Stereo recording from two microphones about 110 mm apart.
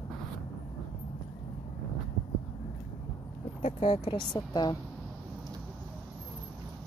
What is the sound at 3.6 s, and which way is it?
Speech, 60° left (ahead or behind).